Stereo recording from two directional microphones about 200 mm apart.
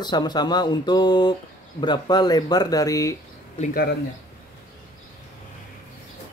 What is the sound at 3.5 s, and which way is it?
Speech, 35° left (ahead or behind).